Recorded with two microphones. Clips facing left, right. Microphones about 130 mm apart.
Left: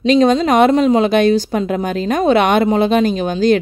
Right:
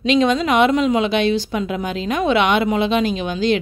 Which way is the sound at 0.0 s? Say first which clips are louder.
Left 4 dB; 40° left (ahead or behind).